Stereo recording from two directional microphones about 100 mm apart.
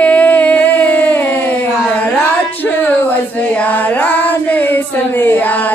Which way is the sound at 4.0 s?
15° left (ahead or behind).